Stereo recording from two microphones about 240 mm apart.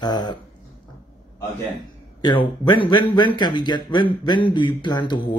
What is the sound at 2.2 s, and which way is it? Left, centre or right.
Speech, centre.